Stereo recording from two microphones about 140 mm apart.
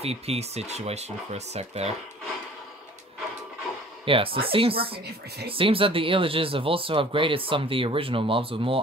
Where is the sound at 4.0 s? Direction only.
40° right (ahead or behind).